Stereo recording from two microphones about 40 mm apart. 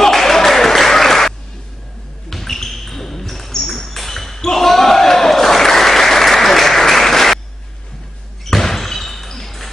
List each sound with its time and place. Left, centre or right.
0.0 s applause: centre
2.2 s a sound: centre
8.5 s basketball bounce: centre